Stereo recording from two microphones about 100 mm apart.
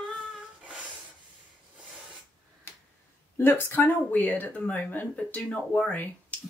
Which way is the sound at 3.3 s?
20° left (ahead or behind).